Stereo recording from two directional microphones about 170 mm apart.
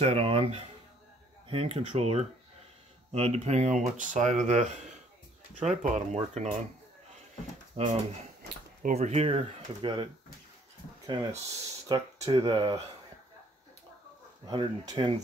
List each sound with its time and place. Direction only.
0.0 s speech: 35° right (ahead or behind)
5.9 s speech: 45° right (ahead or behind)
7.7 s speech: 40° right (ahead or behind)
11.1 s speech: 25° right (ahead or behind)
14.5 s speech: 30° right (ahead or behind)